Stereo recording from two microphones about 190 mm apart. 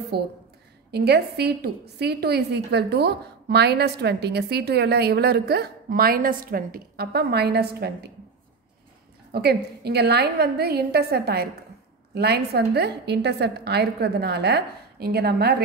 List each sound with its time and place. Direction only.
0.1 s a woman's voice: 55° right (ahead or behind)
9.3 s a woman's voice: 60° right (ahead or behind)